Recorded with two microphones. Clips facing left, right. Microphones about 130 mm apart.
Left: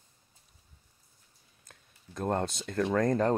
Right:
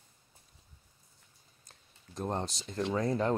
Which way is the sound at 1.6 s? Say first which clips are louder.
Left 4 dB; 55° left (ahead or behind).